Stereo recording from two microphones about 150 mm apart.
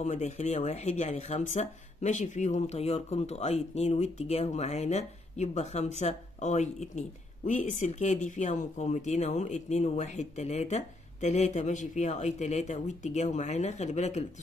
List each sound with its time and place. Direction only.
0.0 s speech: 50° left (ahead or behind)